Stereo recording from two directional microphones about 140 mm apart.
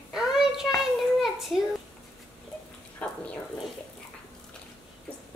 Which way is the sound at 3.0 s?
10° left (ahead or behind).